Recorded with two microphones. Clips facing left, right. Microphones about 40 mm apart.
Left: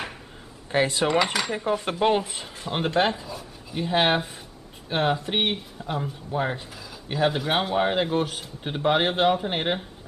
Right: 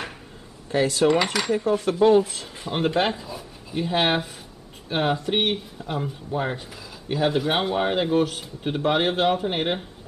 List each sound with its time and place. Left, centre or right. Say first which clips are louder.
0.7 s speech: right 1 dB; left
1.0 s speech: right 2 dB; centre
1.5 s speech: right 4 dB; left
2.6 s speech: right 1 dB; centre